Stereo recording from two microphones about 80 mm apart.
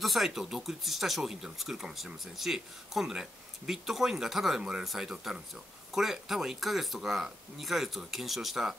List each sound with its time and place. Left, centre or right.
0.0 s speech: centre